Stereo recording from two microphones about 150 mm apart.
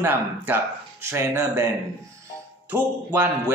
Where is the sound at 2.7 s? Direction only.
15° right (ahead or behind).